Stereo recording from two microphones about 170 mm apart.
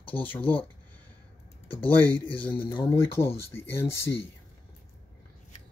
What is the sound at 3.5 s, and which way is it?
Speech, 15° left (ahead or behind).